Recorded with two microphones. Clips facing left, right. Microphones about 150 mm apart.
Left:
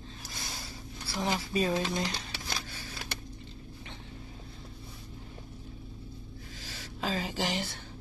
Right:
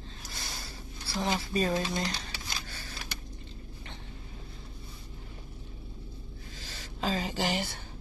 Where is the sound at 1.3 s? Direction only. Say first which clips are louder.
Even; 10° left (ahead or behind).